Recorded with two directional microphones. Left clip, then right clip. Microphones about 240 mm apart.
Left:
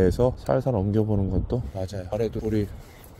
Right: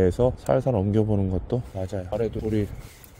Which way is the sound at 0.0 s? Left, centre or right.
Centre.